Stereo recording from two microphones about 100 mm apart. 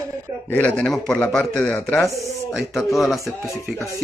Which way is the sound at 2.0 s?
Centre (ahead or behind).